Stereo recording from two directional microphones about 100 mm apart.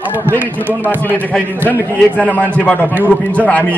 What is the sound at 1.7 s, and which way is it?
A man's voice, 15° left (ahead or behind).